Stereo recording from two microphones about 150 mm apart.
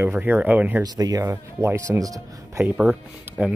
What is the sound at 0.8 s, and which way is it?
Speech, 25° right (ahead or behind).